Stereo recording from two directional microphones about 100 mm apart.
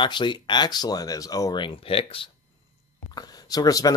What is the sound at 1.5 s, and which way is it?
Speech, 60° left (ahead or behind).